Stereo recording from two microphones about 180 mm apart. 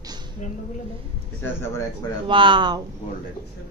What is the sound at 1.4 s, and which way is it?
Speech, 15° left (ahead or behind).